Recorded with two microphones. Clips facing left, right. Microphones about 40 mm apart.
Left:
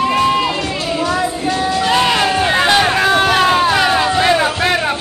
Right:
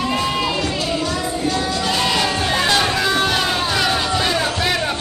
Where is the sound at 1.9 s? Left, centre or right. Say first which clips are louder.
Left 6 dB; left.